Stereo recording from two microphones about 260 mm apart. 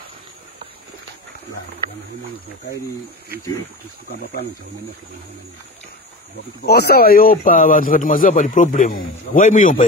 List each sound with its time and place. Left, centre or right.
6.6 s a man's voice: left